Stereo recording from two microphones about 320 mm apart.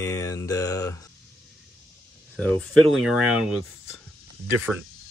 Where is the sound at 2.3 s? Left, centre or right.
Centre.